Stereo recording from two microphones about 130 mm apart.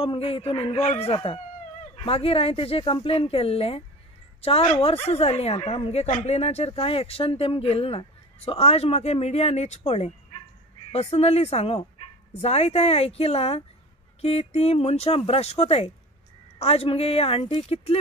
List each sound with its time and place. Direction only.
0.0 s a woman's voice: 45° left (ahead or behind)